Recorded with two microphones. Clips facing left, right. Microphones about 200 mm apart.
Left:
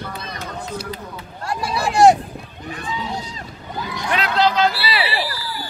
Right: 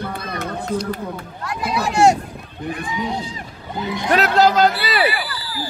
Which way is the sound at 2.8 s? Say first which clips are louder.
Right 1 dB; 15° right (ahead or behind).